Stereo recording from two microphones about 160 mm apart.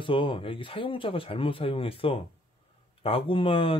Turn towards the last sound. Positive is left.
turn(degrees=35)  # may be behind; listen again after turning